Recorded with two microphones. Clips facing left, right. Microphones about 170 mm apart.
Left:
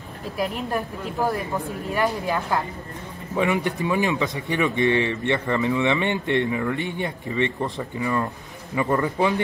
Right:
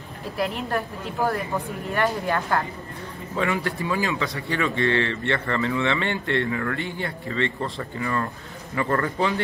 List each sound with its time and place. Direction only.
0.4 s speech: 15° left (ahead or behind)